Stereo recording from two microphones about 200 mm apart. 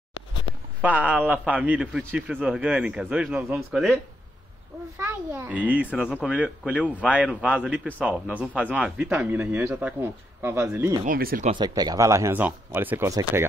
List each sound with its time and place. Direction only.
0.7 s a man's voice: 10° right (ahead or behind)
4.9 s a man's voice: 10° right (ahead or behind)
11.1 s speech: 45° right (ahead or behind)
11.5 s a man's voice: 20° right (ahead or behind)